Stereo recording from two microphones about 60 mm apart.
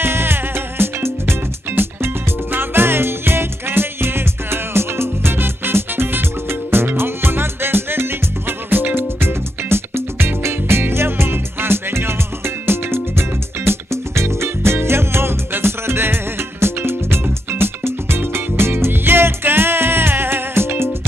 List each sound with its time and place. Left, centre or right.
0.0 s music: right